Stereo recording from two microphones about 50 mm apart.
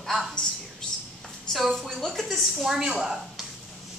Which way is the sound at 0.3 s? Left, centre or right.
Centre.